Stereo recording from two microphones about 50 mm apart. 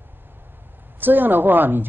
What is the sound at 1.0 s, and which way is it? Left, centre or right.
Speech, right.